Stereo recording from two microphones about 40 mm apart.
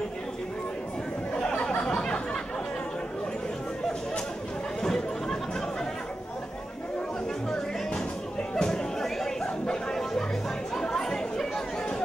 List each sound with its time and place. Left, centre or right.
1.4 s a sound: left
4.8 s chatter: centre
7.5 s music: left
10.7 s chatter: centre